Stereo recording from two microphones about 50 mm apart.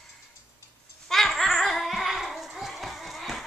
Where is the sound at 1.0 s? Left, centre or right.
Centre.